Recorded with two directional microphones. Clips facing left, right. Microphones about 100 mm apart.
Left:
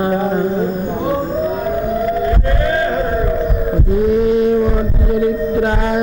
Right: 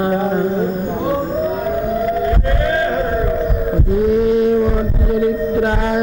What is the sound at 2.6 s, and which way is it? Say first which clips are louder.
Chant: left 1 dB; 20° left (ahead or behind).